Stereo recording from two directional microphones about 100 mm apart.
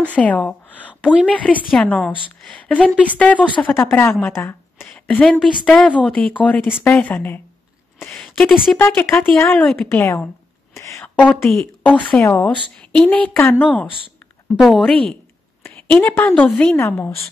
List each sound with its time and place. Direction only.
0.0 s a woman's voice: 15° left (ahead or behind)
8.1 s speech: 5° left (ahead or behind)
8.7 s a woman's voice: 20° left (ahead or behind)
9.5 s speech: 10° left (ahead or behind)
9.8 s a woman's voice: 20° left (ahead or behind)
10.7 s a sound: 30° left (ahead or behind)
11.1 s speech: 15° left (ahead or behind)
12.1 s a woman's voice: 25° left (ahead or behind)
12.9 s speech: 10° left (ahead or behind)
13.8 s speech: 60° left (ahead or behind)
14.6 s a woman's voice: 5° left (ahead or behind)
15.6 s a woman's voice: 20° left (ahead or behind)
16.7 s a woman's voice: 25° left (ahead or behind)